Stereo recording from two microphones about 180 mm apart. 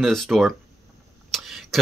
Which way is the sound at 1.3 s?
Centre (ahead or behind).